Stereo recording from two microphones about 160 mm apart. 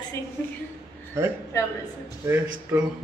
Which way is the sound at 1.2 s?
15° right (ahead or behind).